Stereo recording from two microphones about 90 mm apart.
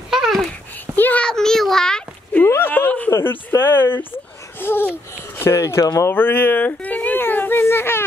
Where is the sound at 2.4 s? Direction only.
25° left (ahead or behind).